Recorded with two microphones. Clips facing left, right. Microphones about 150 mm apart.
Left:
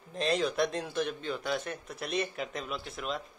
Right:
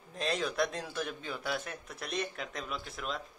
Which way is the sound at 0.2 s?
Centre (ahead or behind).